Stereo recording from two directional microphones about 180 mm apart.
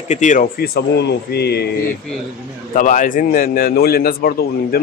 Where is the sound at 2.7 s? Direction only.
45° left (ahead or behind).